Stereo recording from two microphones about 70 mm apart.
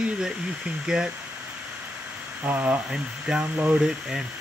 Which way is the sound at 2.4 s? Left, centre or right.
Right.